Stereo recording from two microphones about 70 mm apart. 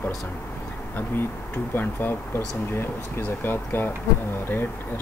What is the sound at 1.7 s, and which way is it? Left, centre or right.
Speech, left.